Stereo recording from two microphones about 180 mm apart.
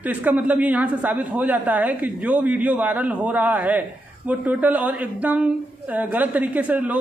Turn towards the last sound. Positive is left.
turn(degrees=-10)  # may be behind; listen again after turning